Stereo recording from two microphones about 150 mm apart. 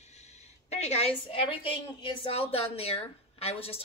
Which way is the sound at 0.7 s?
45° left (ahead or behind).